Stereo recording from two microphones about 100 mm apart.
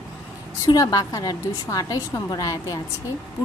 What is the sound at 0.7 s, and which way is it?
A woman's voice, 40° left (ahead or behind).